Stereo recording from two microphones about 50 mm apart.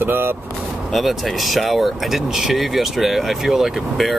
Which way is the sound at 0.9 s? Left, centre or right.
Centre.